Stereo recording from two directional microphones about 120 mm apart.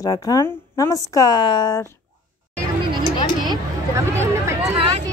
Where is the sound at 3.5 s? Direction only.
25° right (ahead or behind).